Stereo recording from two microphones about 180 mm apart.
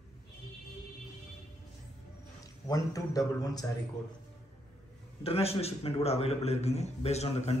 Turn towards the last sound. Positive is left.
turn(degrees=35)  # may be behind; listen again after turning